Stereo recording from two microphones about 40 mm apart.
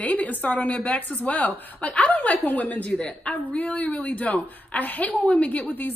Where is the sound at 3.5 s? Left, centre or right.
Left.